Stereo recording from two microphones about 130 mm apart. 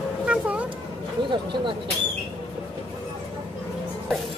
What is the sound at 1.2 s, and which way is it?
Speech, 40° right (ahead or behind).